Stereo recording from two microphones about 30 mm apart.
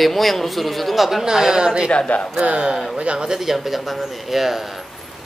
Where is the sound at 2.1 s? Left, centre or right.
Left.